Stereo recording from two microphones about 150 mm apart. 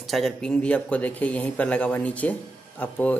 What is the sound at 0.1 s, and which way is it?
Speech, 5° left (ahead or behind).